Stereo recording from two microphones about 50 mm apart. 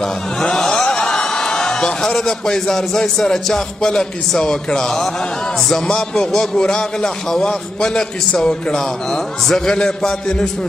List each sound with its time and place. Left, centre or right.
0.0 s a man's voice: centre